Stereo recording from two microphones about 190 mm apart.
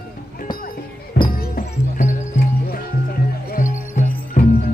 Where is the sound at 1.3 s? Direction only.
50° left (ahead or behind).